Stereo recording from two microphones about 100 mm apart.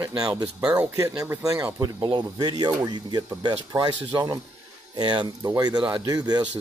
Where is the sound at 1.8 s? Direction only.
45° right (ahead or behind).